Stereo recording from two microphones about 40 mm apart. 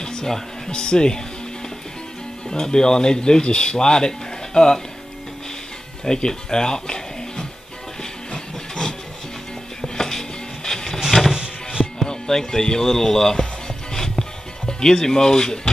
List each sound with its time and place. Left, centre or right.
0.0 s speech: centre
2.5 s speech: centre
6.0 s speech: centre
8.0 s train: centre
9.8 s music: centre
11.3 s music: centre
11.8 s music: centre
14.7 s speech: centre